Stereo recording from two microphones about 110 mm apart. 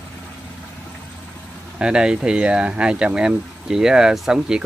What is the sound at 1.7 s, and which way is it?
Speech, 10° right (ahead or behind).